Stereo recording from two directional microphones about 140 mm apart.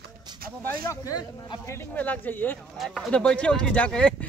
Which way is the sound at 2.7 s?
Centre (ahead or behind).